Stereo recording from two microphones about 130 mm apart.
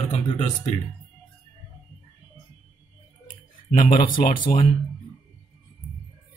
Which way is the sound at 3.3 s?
85° left.